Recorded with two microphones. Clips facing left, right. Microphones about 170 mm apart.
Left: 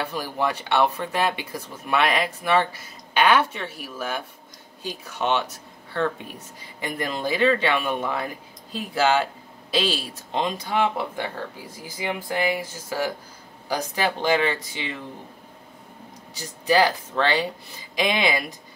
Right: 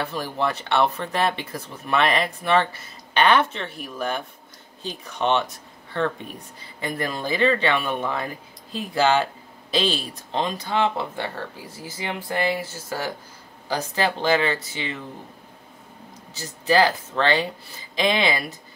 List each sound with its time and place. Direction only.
0.0 s speech: 10° left (ahead or behind)
6.8 s speech: 15° left (ahead or behind)
16.3 s speech: 10° left (ahead or behind)